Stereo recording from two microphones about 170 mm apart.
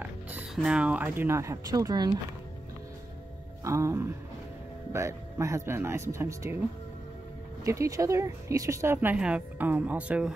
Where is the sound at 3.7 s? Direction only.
15° right (ahead or behind).